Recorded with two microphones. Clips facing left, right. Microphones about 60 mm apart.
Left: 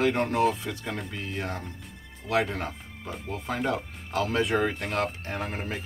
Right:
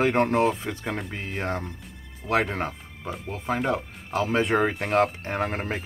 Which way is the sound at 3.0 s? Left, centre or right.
Centre.